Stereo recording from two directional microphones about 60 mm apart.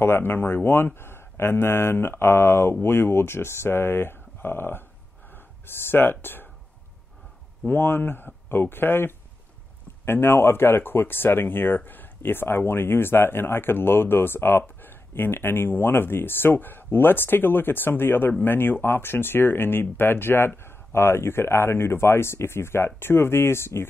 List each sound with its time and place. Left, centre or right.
0.0 s speech: left
5.3 s a sound: left
7.6 s speech: left